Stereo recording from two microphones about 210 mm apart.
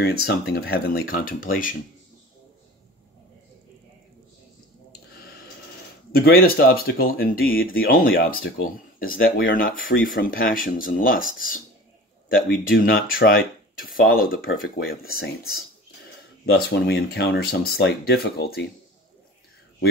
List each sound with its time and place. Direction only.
0.0 s speech: 50° left (ahead or behind)
6.1 s speech: 45° left (ahead or behind)
12.6 s speech: 45° left (ahead or behind)
16.4 s speech: 50° left (ahead or behind)